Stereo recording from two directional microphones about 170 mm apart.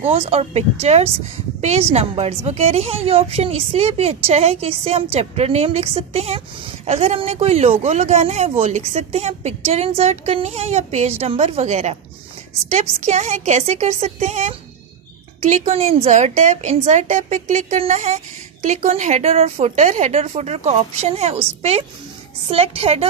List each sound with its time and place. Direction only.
0.0 s a woman's voice: 35° right (ahead or behind)